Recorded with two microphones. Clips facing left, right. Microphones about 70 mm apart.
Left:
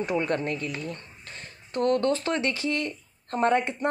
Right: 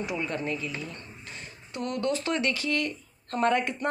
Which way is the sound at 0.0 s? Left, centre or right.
Left.